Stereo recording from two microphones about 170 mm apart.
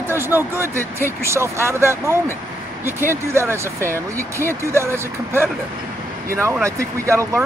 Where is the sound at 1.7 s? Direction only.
15° right (ahead or behind).